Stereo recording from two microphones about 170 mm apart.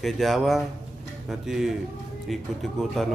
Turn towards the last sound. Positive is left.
turn(degrees=0)  # may be behind; listen again after turning